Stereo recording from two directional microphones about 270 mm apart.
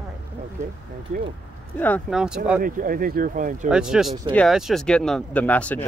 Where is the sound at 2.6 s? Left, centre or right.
Right.